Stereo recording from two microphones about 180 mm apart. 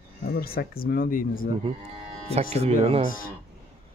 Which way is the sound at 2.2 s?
35° right (ahead or behind).